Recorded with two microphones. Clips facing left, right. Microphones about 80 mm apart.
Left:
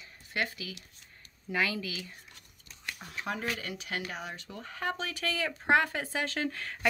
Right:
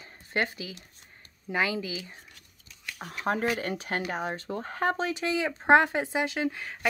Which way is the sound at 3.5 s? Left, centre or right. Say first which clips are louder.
Right 6 dB; right.